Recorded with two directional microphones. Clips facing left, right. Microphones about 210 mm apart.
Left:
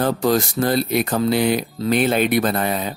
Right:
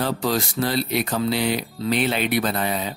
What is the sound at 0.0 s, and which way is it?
Speech, 50° left (ahead or behind).